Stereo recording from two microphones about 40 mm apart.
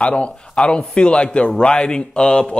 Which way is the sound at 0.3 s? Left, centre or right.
Left.